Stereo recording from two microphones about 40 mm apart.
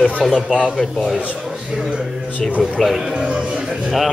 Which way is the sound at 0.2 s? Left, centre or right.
Centre.